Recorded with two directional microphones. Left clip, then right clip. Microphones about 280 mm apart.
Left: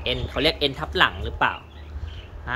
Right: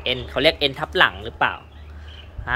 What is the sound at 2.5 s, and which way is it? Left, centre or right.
Quack, centre.